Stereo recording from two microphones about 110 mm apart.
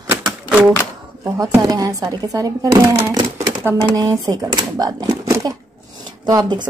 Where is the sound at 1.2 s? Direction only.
35° right (ahead or behind).